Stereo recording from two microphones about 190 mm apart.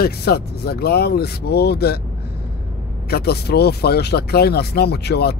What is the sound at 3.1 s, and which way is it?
Speech, 55° left (ahead or behind).